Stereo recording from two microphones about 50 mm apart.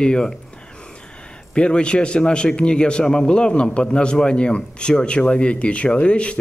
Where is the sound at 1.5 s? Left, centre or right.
Left.